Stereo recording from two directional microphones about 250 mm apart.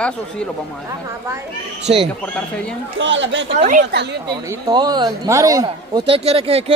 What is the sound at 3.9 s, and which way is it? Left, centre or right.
Speech, right.